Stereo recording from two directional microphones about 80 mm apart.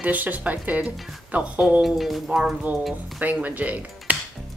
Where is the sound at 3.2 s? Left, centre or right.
Centre.